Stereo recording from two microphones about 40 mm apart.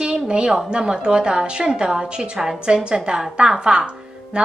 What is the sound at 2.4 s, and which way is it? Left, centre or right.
A woman's voice, centre.